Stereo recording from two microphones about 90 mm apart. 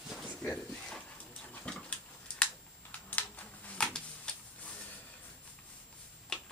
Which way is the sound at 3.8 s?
10° left (ahead or behind).